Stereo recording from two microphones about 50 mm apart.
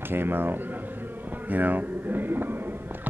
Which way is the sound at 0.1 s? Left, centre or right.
Right.